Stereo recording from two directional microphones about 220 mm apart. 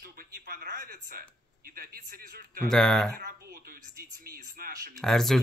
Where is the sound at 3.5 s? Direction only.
45° right (ahead or behind).